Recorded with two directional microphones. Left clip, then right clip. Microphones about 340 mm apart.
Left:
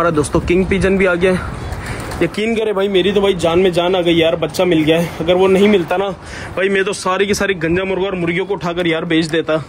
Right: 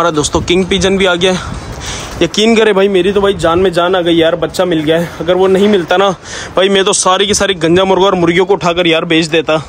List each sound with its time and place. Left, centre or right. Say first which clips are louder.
0.0 s speech: right 3 dB; centre
2.1 s speech: right 6 dB; right
2.4 s speech: right 10 dB; right
2.9 s a man's voice: right 3 dB; centre
5.9 s speech: right 8 dB; right
6.6 s a man's voice: right 6 dB; centre